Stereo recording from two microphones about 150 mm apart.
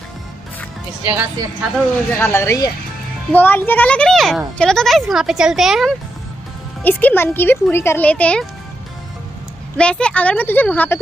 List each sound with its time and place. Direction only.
1.0 s a woman's voice: 25° right (ahead or behind)
2.1 s a child's voice: 15° left (ahead or behind); by 5.9 s centre (ahead or behind)
6.8 s speech: 10° left (ahead or behind)
9.8 s speech: 5° left (ahead or behind)